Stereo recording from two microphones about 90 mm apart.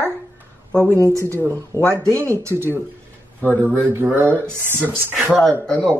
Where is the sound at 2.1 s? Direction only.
30° right (ahead or behind).